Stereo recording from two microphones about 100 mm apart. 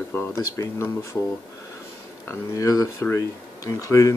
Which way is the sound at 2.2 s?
35° left (ahead or behind).